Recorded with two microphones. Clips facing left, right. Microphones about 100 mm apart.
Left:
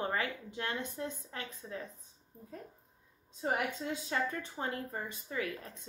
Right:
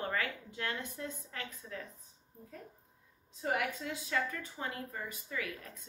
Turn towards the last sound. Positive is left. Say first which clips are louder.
# left 3 dB
turn(degrees=30)  # may be behind; listen again after turning